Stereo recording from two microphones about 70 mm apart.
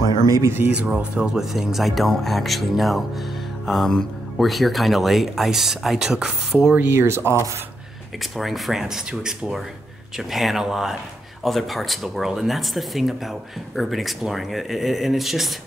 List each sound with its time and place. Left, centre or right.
0.0 s a sound: left
0.6 s speech: right
0.9 s speech: centre
6.8 s speech: right
8.2 s speech: centre